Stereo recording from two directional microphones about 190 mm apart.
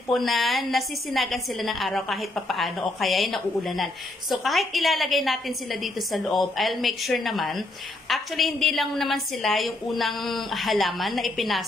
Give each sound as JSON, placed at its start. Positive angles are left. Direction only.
{"t": 0.1, "sound": "a woman's voice", "side_deg": 0}